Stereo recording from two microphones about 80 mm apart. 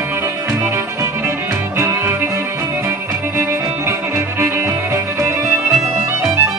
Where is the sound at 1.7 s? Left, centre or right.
Right.